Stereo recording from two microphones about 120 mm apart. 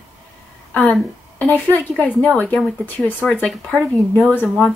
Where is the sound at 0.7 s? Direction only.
10° left (ahead or behind).